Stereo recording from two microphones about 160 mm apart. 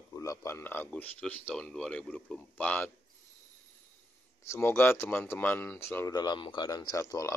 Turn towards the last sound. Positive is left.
turn(degrees=20)  # may be behind; listen again after turning